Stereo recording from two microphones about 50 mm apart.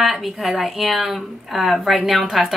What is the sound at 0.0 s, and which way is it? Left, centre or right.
A woman's voice, centre.